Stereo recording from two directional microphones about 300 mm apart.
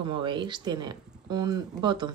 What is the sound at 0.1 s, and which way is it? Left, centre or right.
Speech, centre.